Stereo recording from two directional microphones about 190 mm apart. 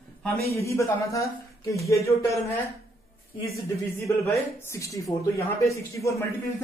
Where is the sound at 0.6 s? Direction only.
15° left (ahead or behind).